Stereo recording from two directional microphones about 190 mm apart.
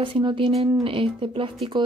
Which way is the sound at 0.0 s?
25° right (ahead or behind).